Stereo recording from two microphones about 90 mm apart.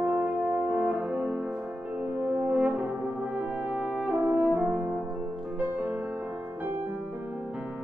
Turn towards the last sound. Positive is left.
turn(degrees=-15)  # may be behind; listen again after turning